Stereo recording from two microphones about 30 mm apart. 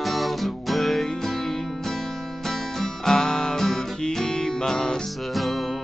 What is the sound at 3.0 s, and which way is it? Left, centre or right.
Music, left.